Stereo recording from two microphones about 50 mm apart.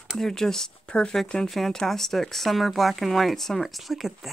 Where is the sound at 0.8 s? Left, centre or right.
Centre.